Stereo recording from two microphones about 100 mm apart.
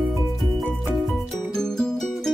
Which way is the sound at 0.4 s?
Centre (ahead or behind).